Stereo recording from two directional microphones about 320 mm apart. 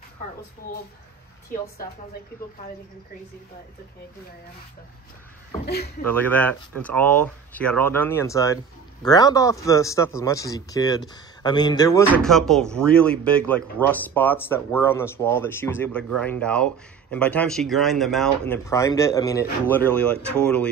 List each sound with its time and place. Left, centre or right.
5.7 s speech: left
6.0 s a man's voice: centre
12.1 s speech: centre